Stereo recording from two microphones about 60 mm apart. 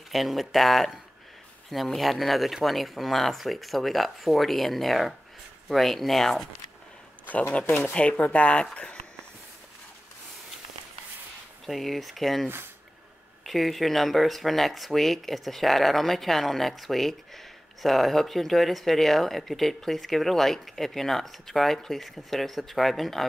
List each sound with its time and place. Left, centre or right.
0.1 s speech: centre
2.0 s speech: centre
7.6 s speech: left
7.9 s speech: left
11.6 s speech: centre